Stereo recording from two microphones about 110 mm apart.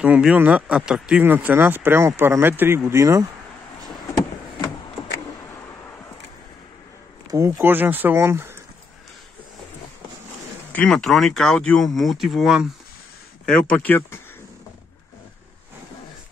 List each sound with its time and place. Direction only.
0.0 s speech: 10° right (ahead or behind); by 3.3 s 30° right (ahead or behind)
7.2 s speech: 30° right (ahead or behind)
7.6 s speech: 20° right (ahead or behind)
10.7 s speech: 10° left (ahead or behind)
13.5 s speech: 10° left (ahead or behind)